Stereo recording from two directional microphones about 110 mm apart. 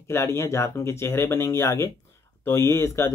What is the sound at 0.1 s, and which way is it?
Speech, 25° left (ahead or behind).